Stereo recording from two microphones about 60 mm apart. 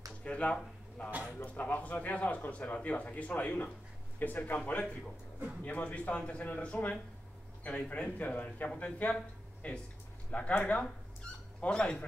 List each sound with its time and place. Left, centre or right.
0.2 s a man's voice: left